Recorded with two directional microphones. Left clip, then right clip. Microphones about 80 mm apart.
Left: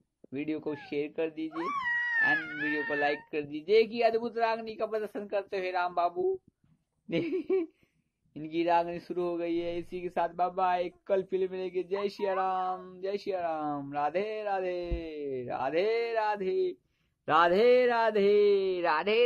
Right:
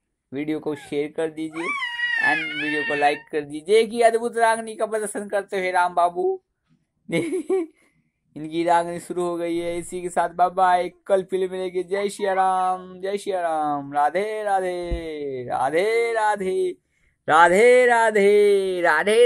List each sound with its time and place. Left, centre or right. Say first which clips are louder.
0.3 s speech: right 8 dB; right
1.5 s a sound: right 4 dB; left
2.3 s speech: right 7 dB; left
3.0 s speech: right 9 dB; right
7.1 s speech: right 7 dB; right
12.7 s speech: right 8 dB; right